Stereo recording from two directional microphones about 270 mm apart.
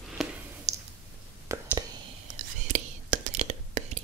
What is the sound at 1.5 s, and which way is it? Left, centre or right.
Whispering, centre.